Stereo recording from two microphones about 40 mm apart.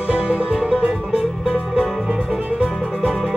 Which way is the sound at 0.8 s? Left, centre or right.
Centre.